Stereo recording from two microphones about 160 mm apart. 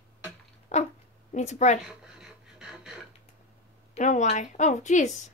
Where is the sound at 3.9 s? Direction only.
50° left (ahead or behind).